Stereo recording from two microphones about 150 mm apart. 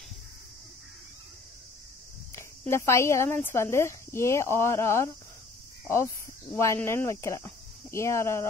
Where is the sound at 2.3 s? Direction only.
15° left (ahead or behind).